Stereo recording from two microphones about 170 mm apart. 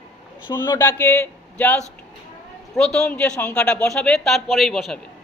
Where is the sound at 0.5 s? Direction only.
15° left (ahead or behind).